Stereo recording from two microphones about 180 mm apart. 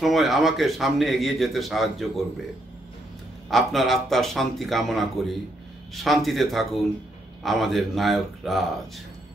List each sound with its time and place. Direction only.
0.0 s a man's voice: centre (ahead or behind)
3.4 s a man's voice: centre (ahead or behind)